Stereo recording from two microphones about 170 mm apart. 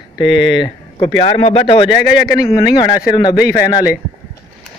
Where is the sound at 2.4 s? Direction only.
20° left (ahead or behind).